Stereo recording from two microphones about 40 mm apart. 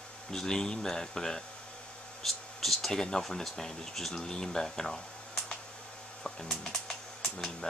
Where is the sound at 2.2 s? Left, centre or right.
Centre.